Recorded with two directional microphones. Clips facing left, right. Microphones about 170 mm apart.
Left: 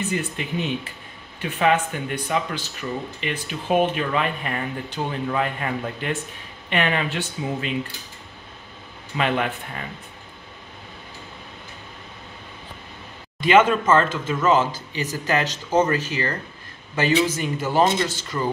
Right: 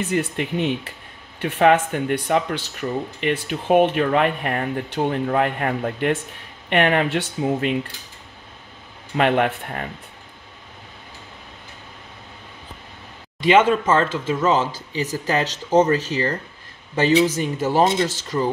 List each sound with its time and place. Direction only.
0.1 s speech: 60° right (ahead or behind)
9.1 s speech: 55° right (ahead or behind)
13.4 s speech: 30° right (ahead or behind)
17.0 s speech: 35° right (ahead or behind)